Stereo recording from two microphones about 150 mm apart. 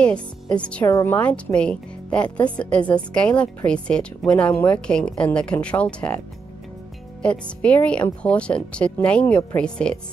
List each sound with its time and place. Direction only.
0.6 s a woman's voice: 5° left (ahead or behind)